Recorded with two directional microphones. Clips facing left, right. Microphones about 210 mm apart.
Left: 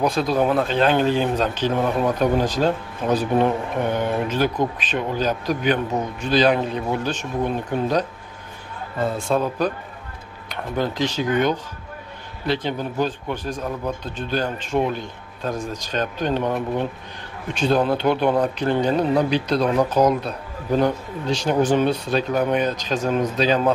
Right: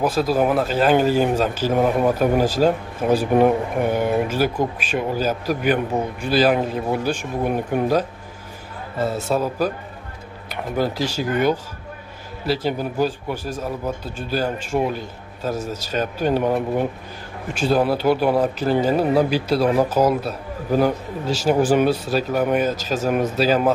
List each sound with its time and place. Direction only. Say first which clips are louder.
0.0 s speech: right 1 dB; 5° right (ahead or behind)